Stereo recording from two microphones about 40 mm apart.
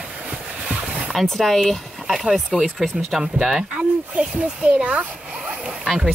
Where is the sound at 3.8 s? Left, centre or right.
Right.